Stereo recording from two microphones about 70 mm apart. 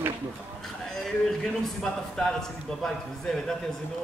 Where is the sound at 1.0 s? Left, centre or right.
Centre.